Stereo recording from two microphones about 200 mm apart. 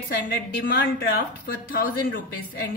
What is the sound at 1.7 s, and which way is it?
Speech, 50° left (ahead or behind).